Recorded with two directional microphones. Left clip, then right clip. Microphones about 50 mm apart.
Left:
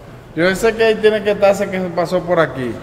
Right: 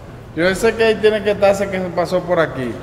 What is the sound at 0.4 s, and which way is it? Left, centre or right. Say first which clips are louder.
A man's voice: left 1 dB; centre.